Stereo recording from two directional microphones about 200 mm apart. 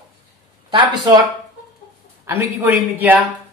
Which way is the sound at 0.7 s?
25° right (ahead or behind).